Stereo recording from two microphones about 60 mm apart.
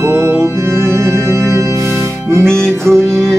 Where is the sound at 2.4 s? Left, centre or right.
Centre.